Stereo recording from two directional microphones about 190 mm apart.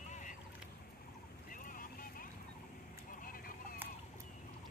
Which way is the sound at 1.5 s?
45° left (ahead or behind).